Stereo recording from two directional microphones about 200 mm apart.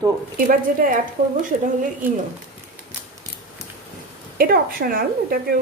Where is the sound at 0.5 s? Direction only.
45° right (ahead or behind).